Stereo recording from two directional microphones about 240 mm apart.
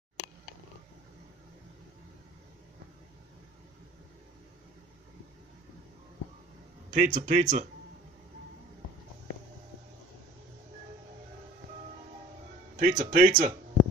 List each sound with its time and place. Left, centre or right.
6.9 s speech: right
12.7 s speech: right